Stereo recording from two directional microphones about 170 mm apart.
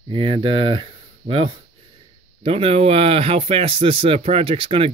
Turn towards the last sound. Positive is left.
turn(degrees=-35)  # may be behind; listen again after turning